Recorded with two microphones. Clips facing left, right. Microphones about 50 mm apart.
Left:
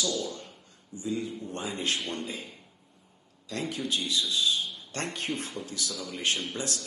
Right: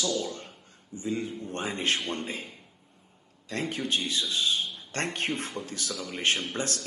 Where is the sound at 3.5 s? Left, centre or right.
Right.